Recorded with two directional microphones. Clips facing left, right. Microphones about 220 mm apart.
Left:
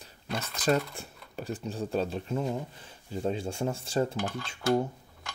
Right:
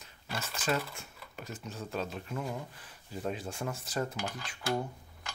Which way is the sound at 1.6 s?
30° left (ahead or behind).